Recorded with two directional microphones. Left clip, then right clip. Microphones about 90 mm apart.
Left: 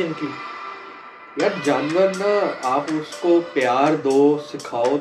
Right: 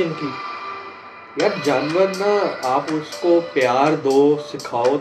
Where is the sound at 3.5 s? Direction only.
20° left (ahead or behind).